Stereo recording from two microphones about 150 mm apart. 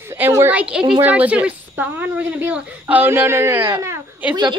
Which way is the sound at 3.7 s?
15° right (ahead or behind).